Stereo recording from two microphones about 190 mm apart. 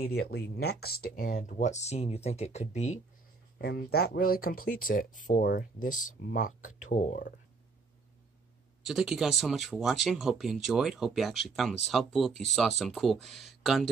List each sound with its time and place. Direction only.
0.2 s speech: 60° left (ahead or behind); by 3.0 s 35° left (ahead or behind)
3.5 s speech: 55° left (ahead or behind); by 7.3 s 40° left (ahead or behind)
8.8 s speech: 5° right (ahead or behind)